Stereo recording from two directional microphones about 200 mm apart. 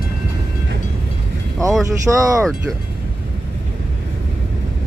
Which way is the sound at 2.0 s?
15° right (ahead or behind).